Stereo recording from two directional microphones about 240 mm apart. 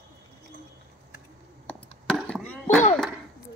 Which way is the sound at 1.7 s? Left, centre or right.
Centre.